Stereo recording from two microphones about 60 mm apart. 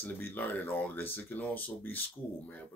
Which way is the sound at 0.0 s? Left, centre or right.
Left.